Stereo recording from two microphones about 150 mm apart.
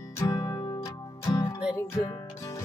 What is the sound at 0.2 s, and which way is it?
Music, 25° left (ahead or behind).